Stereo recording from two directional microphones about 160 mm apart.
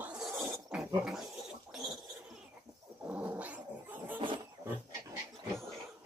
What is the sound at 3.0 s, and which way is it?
Dog, 10° right (ahead or behind).